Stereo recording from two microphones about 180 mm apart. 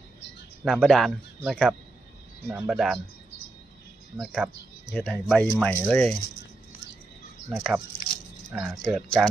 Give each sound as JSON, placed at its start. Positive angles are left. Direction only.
{"t": 0.7, "sound": "speech", "side_deg": 0}
{"t": 4.2, "sound": "speech", "side_deg": 5}
{"t": 7.4, "sound": "speech", "side_deg": 0}
{"t": 8.8, "sound": "speech", "side_deg": 5}